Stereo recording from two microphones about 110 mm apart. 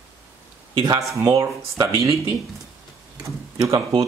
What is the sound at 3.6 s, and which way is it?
Speech, 30° right (ahead or behind).